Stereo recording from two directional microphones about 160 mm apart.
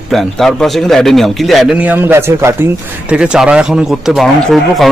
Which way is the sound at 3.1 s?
5° right (ahead or behind).